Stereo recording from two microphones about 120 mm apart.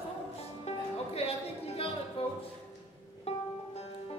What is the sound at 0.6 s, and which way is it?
Music, 60° left (ahead or behind).